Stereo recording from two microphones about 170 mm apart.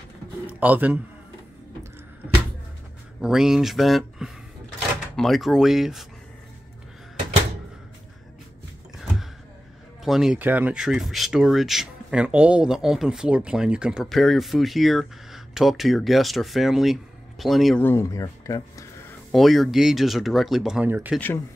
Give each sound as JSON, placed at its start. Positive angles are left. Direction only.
{"t": 0.5, "sound": "a man's voice", "side_deg": -10}
{"t": 3.2, "sound": "speech", "side_deg": -5}
{"t": 9.0, "sound": "a sound", "side_deg": 0}
{"t": 10.0, "sound": "speech", "side_deg": -5}
{"t": 17.8, "sound": "speech", "side_deg": 15}
{"t": 19.3, "sound": "speech", "side_deg": 0}